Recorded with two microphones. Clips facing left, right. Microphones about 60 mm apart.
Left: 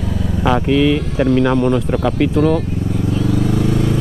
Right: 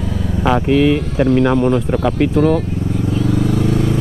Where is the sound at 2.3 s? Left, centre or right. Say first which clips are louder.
Right 1 dB; centre.